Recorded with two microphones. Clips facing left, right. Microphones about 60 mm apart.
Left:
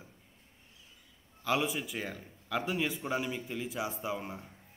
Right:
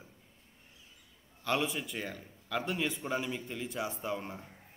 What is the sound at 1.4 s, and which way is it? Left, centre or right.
A man's voice, centre.